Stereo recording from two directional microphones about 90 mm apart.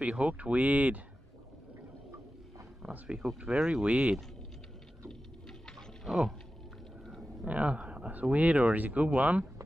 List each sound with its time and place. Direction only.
0.0 s speech: 15° right (ahead or behind)
2.9 s speech: 10° right (ahead or behind)
5.5 s pigeon: centre (ahead or behind)
7.4 s speech: 15° right (ahead or behind)